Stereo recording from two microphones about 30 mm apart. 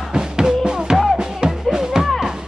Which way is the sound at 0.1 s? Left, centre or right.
Right.